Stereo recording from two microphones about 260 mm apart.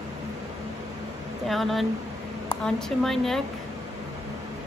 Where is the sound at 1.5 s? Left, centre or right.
Centre.